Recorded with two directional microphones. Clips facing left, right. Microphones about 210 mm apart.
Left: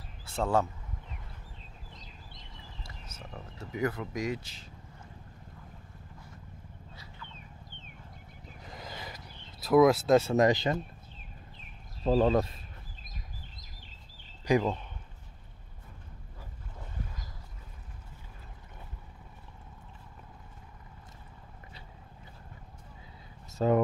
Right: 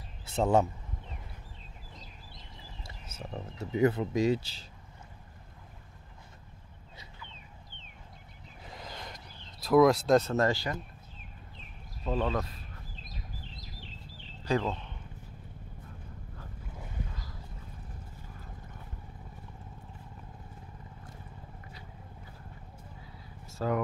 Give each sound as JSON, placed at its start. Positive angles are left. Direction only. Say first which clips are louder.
{"t": 0.3, "sound": "speech", "louder": "right 3 dB", "side_deg": -20}
{"t": 3.1, "sound": "speech", "louder": "right 6 dB", "side_deg": -25}
{"t": 8.6, "sound": "a sound", "louder": "left 1 dB", "side_deg": 0}
{"t": 12.0, "sound": "speech", "louder": "left 6 dB", "side_deg": 30}
{"t": 13.1, "sound": "bird", "louder": "right 3 dB", "side_deg": 45}
{"t": 14.4, "sound": "speech", "louder": "left 3 dB", "side_deg": 15}
{"t": 23.6, "sound": "speech", "louder": "left 5 dB", "side_deg": 25}